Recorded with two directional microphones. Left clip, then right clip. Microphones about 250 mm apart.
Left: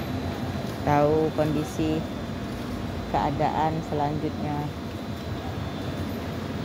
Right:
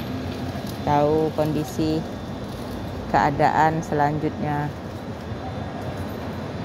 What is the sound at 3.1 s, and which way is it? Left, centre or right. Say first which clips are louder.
Speech: right 7 dB; centre.